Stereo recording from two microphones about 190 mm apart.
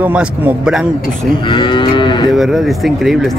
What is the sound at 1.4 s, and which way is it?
Moo, 25° left (ahead or behind).